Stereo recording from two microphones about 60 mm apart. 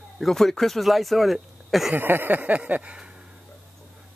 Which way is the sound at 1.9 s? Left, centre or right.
Right.